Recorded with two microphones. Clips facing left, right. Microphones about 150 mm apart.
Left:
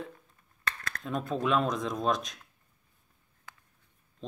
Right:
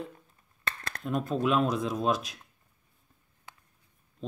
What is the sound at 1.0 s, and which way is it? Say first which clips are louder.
Speech: right 2 dB; 5° right (ahead or behind).